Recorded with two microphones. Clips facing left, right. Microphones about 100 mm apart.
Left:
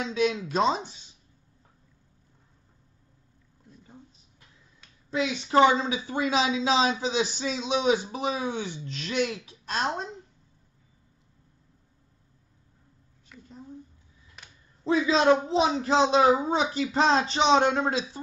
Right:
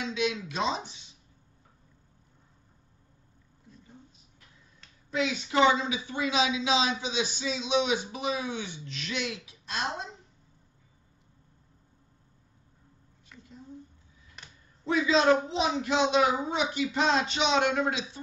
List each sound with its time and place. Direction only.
0.0 s speech: 40° left (ahead or behind)
5.1 s speech: 30° left (ahead or behind)
13.3 s a sound: 5° left (ahead or behind)
14.9 s speech: 30° left (ahead or behind)